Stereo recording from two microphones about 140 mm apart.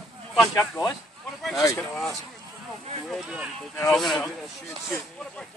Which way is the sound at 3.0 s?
Centre (ahead or behind).